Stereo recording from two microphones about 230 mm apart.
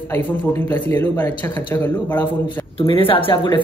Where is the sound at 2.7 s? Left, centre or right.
Left.